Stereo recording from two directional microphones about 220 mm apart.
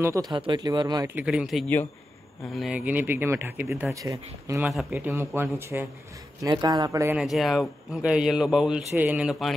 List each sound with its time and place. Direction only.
0.0 s speech: 15° right (ahead or behind)
4.6 s speech: 5° right (ahead or behind)
7.2 s speech: centre (ahead or behind)